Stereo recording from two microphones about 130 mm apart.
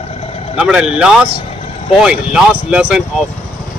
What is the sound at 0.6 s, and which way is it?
Speech, 5° right (ahead or behind).